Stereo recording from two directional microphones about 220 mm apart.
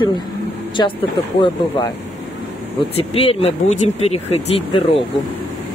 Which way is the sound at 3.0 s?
25° left (ahead or behind).